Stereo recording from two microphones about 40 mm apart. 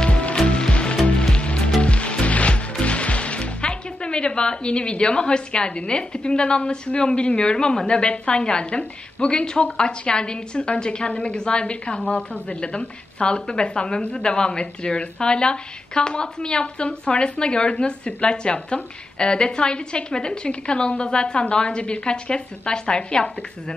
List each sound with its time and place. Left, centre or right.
0.0 s music: left
2.8 s speech: left